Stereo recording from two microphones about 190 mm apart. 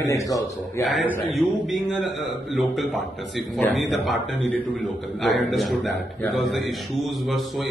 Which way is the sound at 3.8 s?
Centre (ahead or behind).